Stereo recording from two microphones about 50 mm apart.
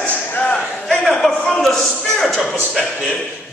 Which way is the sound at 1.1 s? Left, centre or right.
Centre.